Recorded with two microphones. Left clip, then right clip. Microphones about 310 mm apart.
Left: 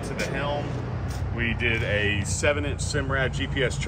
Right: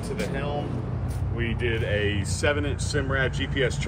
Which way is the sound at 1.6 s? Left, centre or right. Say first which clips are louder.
Left 1 dB; centre.